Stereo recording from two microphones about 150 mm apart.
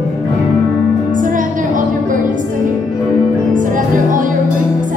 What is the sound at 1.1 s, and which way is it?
Music, 60° right (ahead or behind).